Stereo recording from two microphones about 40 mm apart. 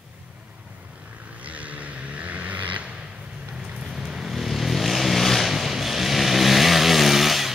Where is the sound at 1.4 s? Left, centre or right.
Right.